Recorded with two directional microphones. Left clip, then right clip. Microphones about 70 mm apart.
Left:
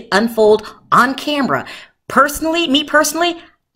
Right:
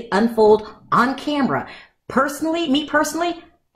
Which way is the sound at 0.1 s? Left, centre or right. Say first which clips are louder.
Left 3 dB; left.